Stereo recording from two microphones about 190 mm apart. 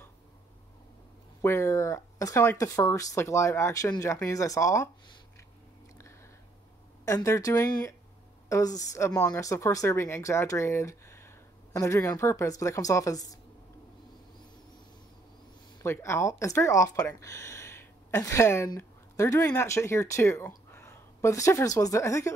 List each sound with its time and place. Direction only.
1.4 s speech: 15° left (ahead or behind)
7.1 s speech: 15° left (ahead or behind)
15.8 s speech: 15° left (ahead or behind)